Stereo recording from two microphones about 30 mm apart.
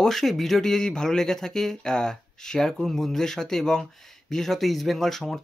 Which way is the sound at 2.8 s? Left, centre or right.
Centre.